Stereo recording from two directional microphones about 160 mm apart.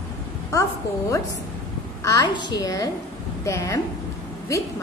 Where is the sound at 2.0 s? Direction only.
25° left (ahead or behind).